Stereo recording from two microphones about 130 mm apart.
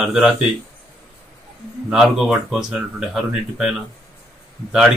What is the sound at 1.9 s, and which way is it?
Speech, 5° right (ahead or behind).